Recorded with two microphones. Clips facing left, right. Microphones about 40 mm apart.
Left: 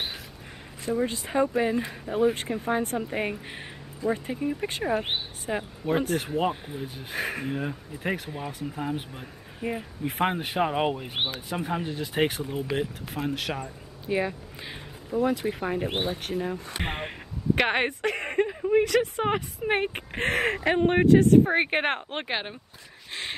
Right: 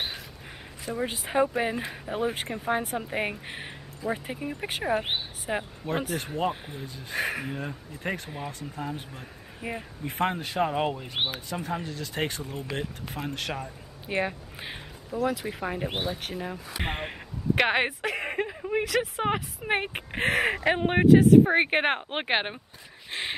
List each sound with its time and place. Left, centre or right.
1.0 s speech: centre
10.2 s speech: centre
11.1 s speech: centre
11.4 s speech: centre
12.3 s speech: centre
14.0 s speech: centre
15.2 s speech: centre
15.9 s speech: centre
16.2 s speech: centre
22.1 s speech: right